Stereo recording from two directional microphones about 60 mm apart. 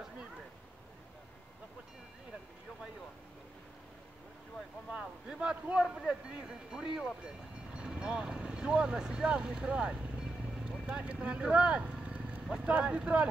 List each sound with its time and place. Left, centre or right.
5.4 s a man's voice: centre
5.8 s speech: centre